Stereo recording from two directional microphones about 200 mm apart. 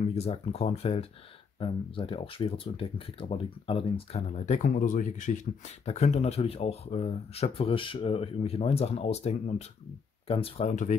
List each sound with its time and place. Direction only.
0.0 s speech: 30° left (ahead or behind)